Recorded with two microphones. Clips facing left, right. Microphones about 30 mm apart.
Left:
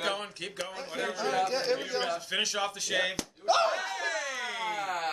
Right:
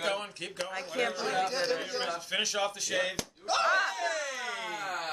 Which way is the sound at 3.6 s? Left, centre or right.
Right.